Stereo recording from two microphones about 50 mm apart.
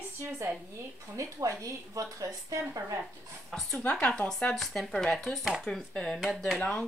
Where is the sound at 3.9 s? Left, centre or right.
Centre.